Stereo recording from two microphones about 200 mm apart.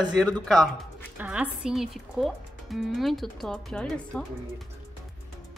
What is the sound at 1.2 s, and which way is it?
Speech, 5° right (ahead or behind).